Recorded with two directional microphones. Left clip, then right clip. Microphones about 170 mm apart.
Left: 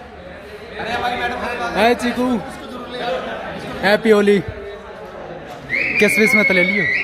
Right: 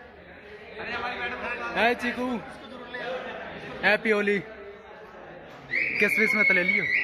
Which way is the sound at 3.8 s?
25° left (ahead or behind).